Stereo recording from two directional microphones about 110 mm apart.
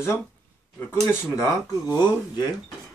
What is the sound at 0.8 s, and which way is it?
Speech, 25° left (ahead or behind).